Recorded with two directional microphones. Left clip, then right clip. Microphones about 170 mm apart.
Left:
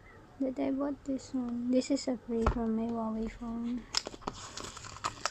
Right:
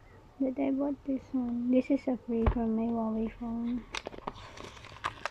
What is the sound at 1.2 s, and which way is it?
Speech, 10° left (ahead or behind).